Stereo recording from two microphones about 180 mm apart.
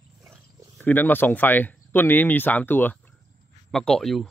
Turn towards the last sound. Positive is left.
turn(degrees=0)  # may be behind; listen again after turning